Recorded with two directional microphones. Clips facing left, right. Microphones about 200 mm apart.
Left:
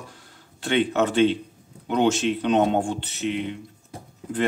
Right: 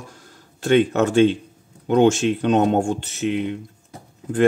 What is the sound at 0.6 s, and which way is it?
Speech, 45° right (ahead or behind).